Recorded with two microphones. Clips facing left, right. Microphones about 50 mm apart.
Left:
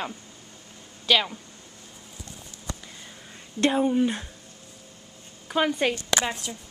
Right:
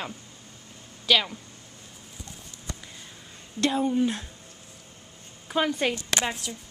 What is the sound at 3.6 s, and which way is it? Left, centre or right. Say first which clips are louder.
Speech: left 2 dB; left.